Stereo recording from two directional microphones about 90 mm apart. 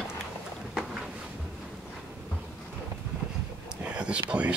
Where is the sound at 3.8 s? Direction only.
10° right (ahead or behind).